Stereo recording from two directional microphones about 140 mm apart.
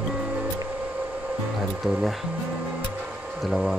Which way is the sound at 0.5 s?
10° right (ahead or behind).